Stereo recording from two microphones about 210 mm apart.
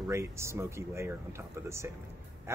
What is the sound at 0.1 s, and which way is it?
Speech, 15° right (ahead or behind).